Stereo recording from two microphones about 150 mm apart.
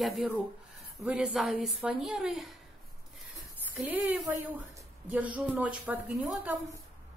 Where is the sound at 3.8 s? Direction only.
Centre (ahead or behind).